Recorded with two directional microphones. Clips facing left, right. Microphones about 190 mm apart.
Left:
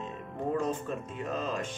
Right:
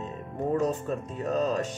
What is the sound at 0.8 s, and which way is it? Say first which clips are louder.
Speech: right 5 dB; 40° right (ahead or behind).